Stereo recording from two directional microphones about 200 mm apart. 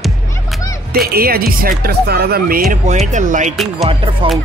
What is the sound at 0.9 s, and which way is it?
Speech, 50° right (ahead or behind).